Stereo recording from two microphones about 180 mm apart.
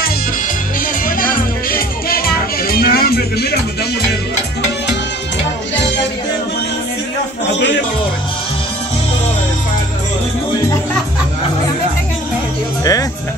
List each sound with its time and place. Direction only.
1.0 s music: 50° left (ahead or behind)
7.5 s music: 80° left